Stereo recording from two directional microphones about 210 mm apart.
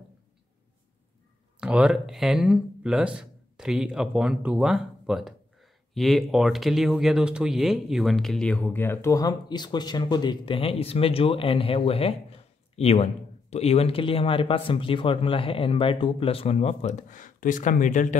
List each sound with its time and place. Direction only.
1.6 s speech: 5° right (ahead or behind); by 18.0 s 35° left (ahead or behind)